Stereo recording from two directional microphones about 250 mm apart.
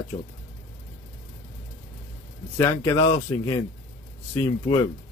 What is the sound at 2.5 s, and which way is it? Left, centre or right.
A man's voice, centre.